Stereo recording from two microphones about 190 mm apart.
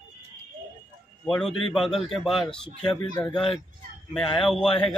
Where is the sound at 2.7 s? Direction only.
25° left (ahead or behind).